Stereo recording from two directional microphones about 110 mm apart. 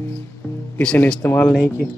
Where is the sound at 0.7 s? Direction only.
10° left (ahead or behind).